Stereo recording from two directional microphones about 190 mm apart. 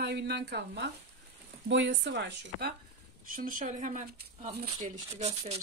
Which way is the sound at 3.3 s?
45° right (ahead or behind).